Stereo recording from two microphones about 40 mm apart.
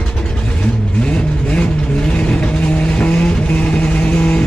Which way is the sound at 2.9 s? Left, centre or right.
Left.